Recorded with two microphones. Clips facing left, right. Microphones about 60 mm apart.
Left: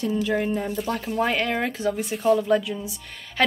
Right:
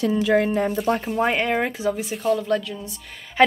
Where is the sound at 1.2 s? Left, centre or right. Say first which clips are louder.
Right 1 dB; centre.